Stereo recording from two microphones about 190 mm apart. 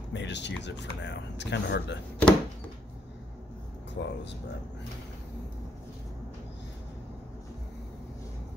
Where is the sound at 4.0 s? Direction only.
70° left (ahead or behind).